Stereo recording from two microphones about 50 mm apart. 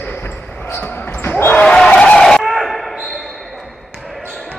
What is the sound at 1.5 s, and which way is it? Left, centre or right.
Basketball bounce, centre.